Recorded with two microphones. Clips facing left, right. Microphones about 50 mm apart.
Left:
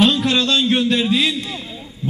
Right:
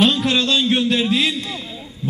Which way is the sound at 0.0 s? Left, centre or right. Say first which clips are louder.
Left 1 dB; centre.